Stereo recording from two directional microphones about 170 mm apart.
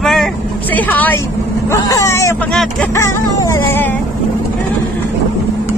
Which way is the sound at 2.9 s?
15° left (ahead or behind).